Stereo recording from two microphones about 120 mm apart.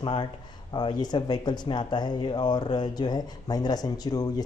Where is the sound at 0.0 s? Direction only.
45° left (ahead or behind).